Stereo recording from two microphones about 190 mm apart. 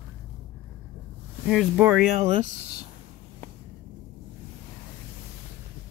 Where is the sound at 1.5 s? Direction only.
5° right (ahead or behind).